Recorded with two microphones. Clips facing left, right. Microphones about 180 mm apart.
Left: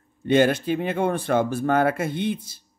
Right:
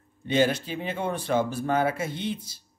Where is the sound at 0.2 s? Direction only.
55° left (ahead or behind).